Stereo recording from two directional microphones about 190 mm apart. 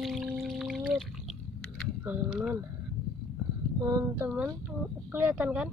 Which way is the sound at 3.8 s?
15° right (ahead or behind).